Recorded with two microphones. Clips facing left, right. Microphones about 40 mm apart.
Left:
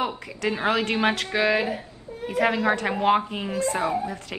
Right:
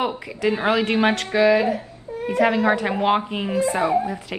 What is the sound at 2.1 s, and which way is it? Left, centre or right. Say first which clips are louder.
Baby cry: right 8 dB; right.